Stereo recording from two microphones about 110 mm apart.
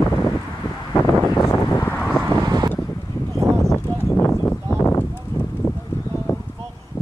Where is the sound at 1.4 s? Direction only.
25° left (ahead or behind).